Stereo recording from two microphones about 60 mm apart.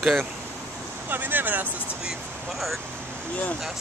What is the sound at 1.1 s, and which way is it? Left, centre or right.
Speech, right.